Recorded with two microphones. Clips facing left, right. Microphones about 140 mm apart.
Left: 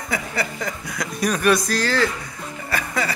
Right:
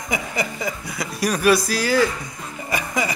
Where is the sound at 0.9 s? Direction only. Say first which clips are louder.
Left 1 dB; 5° right (ahead or behind).